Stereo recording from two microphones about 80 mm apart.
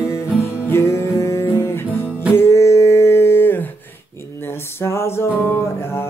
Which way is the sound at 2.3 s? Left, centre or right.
Left.